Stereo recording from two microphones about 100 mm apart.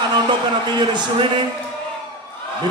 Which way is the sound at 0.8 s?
50° right (ahead or behind).